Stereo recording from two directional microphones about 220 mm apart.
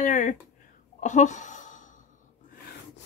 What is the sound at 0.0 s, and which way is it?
Speech, 35° left (ahead or behind).